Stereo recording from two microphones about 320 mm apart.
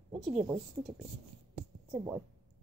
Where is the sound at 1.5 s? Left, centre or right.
Centre.